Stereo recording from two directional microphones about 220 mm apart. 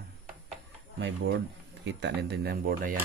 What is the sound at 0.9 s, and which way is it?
Speech, 55° right (ahead or behind).